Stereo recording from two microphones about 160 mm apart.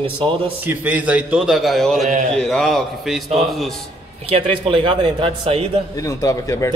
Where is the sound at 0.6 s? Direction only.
10° right (ahead or behind).